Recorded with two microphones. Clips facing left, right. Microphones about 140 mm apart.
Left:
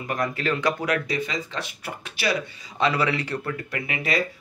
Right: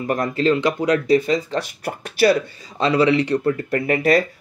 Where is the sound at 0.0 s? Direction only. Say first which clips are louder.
Right 7 dB; 35° right (ahead or behind).